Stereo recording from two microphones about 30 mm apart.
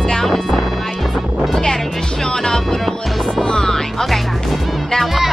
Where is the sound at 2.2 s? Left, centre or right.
Left.